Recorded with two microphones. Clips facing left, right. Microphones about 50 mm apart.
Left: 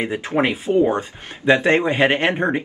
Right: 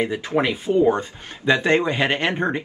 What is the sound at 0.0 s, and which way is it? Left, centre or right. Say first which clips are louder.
Speech: left 1 dB; left.